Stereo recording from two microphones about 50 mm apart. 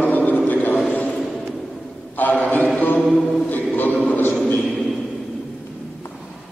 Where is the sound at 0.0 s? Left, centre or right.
Left.